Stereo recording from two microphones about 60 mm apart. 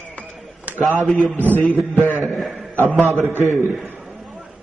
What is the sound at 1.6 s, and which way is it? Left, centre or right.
A man's voice, centre.